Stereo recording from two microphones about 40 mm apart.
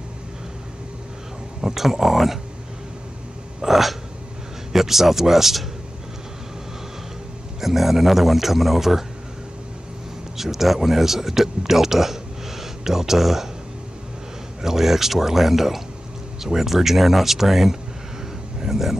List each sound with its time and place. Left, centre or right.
1.6 s speech: centre
3.6 s speech: centre
7.6 s speech: centre
10.3 s speech: centre
14.6 s speech: centre
18.6 s a sound: centre